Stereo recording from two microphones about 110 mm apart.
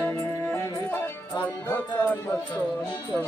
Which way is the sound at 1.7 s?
20° left (ahead or behind).